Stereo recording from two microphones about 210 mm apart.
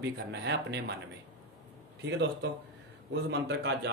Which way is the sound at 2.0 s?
55° right (ahead or behind).